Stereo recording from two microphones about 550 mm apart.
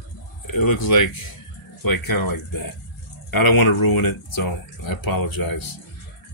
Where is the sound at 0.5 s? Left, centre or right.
Left.